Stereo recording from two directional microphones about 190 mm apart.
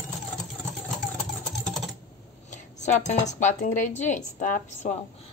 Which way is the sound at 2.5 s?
40° left (ahead or behind).